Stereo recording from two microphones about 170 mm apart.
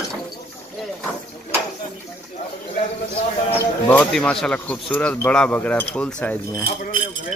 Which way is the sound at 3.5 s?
10° left (ahead or behind).